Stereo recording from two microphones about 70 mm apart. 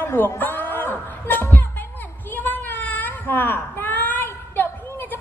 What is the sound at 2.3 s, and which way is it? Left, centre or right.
Baby cry, left.